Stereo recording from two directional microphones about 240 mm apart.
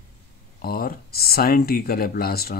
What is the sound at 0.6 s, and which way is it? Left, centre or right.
Speech, left.